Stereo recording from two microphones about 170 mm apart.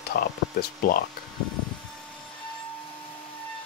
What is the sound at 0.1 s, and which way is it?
Speech, 60° left (ahead or behind).